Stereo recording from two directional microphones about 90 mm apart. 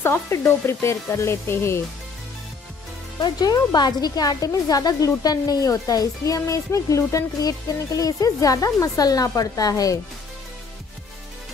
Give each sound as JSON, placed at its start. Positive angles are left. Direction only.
{"t": 0.0, "sound": "speech", "side_deg": 30}
{"t": 3.2, "sound": "a woman's voice", "side_deg": 45}